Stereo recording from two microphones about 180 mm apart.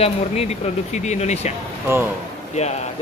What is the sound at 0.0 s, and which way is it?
Speech, 35° left (ahead or behind).